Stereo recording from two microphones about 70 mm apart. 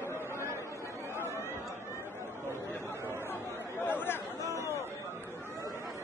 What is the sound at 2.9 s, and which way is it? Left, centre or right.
Chatter, left.